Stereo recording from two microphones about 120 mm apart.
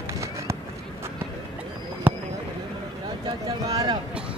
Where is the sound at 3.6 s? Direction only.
30° right (ahead or behind).